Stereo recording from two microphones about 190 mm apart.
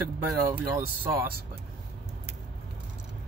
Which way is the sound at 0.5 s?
15° right (ahead or behind).